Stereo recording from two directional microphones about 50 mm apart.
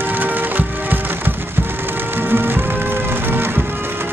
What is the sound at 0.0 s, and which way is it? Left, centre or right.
Music, right.